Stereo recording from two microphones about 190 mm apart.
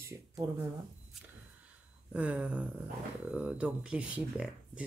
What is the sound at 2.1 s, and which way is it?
Speech, 5° right (ahead or behind).